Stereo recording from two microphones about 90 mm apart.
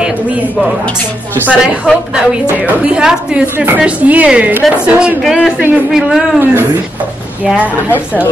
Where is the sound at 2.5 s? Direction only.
15° right (ahead or behind).